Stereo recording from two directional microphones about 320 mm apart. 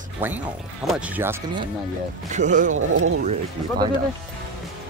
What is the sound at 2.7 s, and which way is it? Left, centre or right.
Speech, right.